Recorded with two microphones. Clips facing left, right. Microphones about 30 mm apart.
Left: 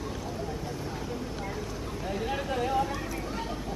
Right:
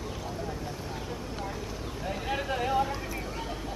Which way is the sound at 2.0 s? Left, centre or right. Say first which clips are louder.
Even; centre.